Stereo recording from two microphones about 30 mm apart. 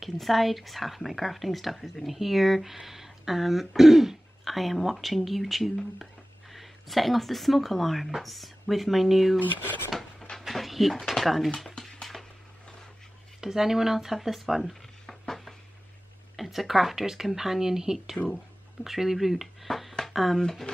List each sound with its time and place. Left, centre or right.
0.0 s speech: centre
4.5 s speech: centre
10.4 s a sound: centre
11.1 s speech: centre
12.0 s a sound: centre
13.4 s speech: centre
14.6 s a sound: centre
16.3 s speech: centre
18.2 s speech: left
18.9 s speech: centre
20.1 s a sound: centre
20.3 s speech: centre